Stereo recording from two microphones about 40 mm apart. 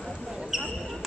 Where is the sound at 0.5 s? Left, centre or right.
Centre.